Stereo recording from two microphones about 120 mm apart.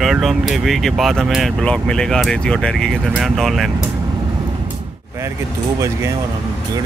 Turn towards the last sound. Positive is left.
turn(degrees=-25)  # may be behind; listen again after turning